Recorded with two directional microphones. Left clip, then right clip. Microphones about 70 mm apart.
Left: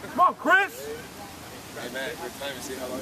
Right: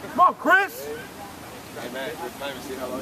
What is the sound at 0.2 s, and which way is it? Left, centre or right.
Speech, centre.